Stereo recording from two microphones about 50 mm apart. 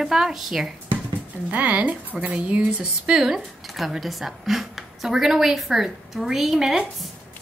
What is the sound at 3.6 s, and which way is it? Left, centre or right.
A woman's voice, centre.